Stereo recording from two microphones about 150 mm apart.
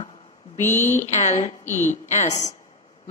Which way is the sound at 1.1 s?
50° left (ahead or behind).